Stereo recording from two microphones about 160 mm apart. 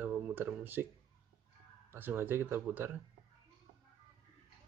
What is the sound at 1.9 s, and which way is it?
Speech, 15° right (ahead or behind).